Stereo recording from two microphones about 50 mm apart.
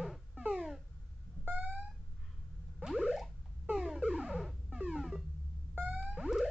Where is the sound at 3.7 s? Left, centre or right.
Centre.